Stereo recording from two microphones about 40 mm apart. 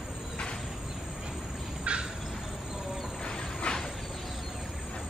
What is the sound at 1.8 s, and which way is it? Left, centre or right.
Bird, right.